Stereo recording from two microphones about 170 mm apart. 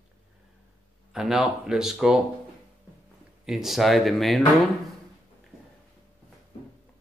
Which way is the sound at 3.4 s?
Centre (ahead or behind).